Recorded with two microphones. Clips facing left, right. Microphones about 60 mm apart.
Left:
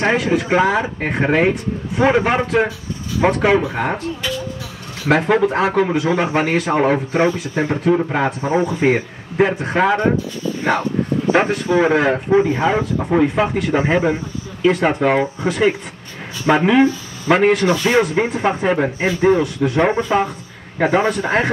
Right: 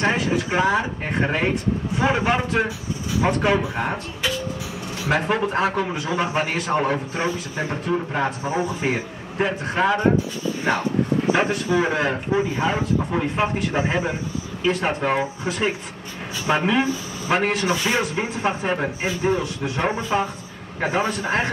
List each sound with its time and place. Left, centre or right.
0.1 s a man's voice: left
5.0 s speech: left
5.8 s a man's voice: left
7.8 s a man's voice: left
11.3 s a man's voice: left
13.7 s a man's voice: left